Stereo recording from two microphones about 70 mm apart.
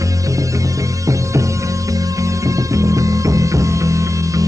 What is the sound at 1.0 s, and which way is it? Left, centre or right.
Music, right.